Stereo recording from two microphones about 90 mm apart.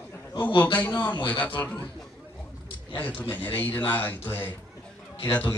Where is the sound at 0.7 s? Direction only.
60° left (ahead or behind).